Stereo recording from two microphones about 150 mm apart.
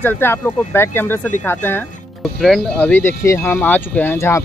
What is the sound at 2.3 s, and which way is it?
Speech, centre (ahead or behind).